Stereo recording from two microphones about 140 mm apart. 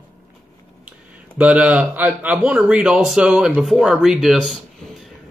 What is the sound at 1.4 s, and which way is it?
Speech, 10° right (ahead or behind).